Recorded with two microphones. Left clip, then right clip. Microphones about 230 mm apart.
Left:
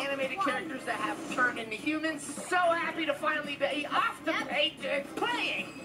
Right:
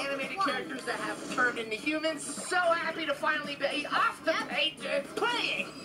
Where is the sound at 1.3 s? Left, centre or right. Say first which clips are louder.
Right 2 dB; centre.